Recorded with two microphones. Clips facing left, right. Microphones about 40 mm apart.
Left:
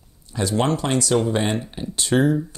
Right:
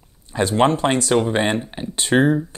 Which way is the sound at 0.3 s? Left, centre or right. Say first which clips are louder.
Right 4 dB; right.